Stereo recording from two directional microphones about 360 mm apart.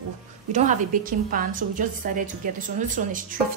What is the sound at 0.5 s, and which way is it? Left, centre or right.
A woman's voice, centre.